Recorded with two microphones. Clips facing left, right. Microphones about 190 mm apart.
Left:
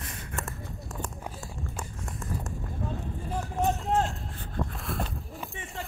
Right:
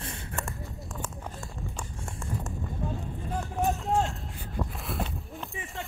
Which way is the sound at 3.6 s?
Centre (ahead or behind).